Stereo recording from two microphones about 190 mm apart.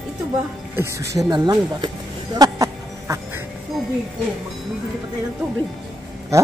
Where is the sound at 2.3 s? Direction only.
20° right (ahead or behind).